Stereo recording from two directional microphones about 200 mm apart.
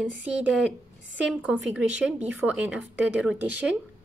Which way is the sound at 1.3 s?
5° right (ahead or behind).